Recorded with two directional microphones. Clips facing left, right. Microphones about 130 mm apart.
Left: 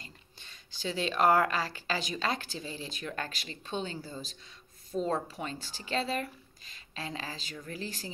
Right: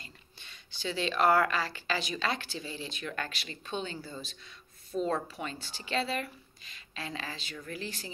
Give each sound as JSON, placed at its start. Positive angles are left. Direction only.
{"t": 0.0, "sound": "speech", "side_deg": 40}